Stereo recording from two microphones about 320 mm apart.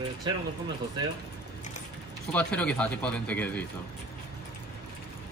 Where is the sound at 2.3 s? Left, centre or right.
Centre.